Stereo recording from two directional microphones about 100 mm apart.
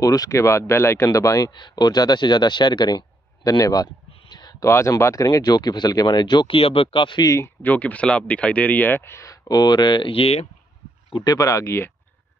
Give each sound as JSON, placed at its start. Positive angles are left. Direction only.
{"t": 0.0, "sound": "speech", "side_deg": 35}
{"t": 1.5, "sound": "speech", "side_deg": 45}
{"t": 4.6, "sound": "speech", "side_deg": 30}
{"t": 7.2, "sound": "speech", "side_deg": 30}
{"t": 7.7, "sound": "speech", "side_deg": 15}
{"t": 11.1, "sound": "speech", "side_deg": 35}